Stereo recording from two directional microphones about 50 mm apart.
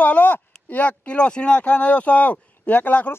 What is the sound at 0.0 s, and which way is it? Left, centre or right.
Speech, left.